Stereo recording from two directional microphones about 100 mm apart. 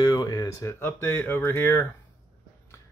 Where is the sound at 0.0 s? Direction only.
40° left (ahead or behind).